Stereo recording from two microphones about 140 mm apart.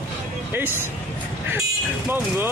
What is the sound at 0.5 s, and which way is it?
Speech, 15° right (ahead or behind).